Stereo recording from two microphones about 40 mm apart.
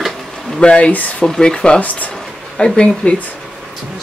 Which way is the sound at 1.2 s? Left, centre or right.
Centre.